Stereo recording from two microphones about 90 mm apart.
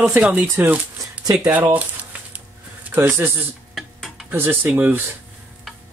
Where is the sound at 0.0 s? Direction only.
20° right (ahead or behind).